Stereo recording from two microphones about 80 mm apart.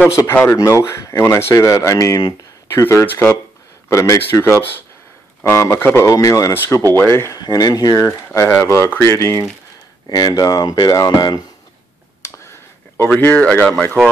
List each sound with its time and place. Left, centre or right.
0.3 s speech: left
2.7 s speech: left
3.9 s speech: left
6.9 s speech: left
7.3 s speech: left
8.4 s speech: left
10.0 s speech: left
12.9 s speech: left